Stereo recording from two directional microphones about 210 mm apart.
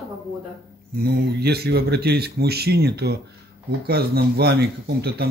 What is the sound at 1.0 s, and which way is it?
Speech, 50° right (ahead or behind).